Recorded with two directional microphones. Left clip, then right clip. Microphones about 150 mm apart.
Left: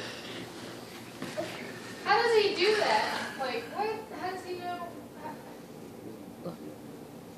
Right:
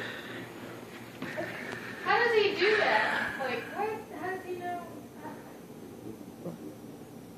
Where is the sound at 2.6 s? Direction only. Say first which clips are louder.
Right 1 dB; 5° left (ahead or behind).